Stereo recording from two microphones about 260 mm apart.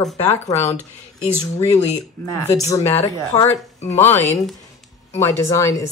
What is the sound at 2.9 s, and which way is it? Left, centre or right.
Speech, left.